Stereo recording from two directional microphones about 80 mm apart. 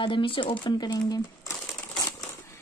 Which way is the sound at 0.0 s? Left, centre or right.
Left.